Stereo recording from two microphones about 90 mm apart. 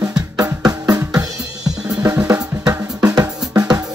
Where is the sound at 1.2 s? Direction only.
40° right (ahead or behind).